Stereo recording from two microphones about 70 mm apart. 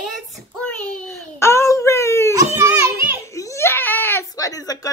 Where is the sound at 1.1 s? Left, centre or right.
Left.